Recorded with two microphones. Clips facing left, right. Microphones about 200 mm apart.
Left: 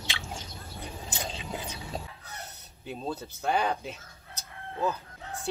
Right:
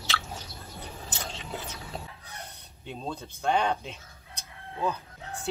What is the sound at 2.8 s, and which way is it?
Chicken, 5° left (ahead or behind).